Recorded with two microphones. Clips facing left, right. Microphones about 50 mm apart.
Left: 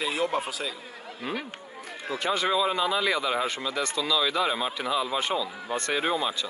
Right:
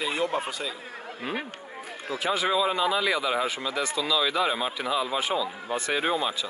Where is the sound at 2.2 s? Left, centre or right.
Centre.